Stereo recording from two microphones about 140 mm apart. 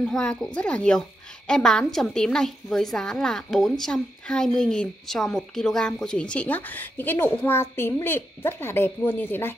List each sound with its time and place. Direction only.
0.0 s a woman's voice: 5° left (ahead or behind)